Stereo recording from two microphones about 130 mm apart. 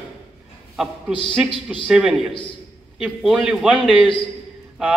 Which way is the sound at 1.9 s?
5° right (ahead or behind).